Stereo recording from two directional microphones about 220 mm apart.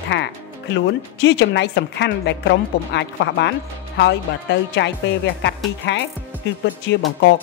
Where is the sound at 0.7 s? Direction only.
55° left (ahead or behind).